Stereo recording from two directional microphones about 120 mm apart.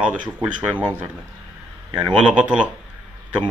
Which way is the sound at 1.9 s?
40° right (ahead or behind).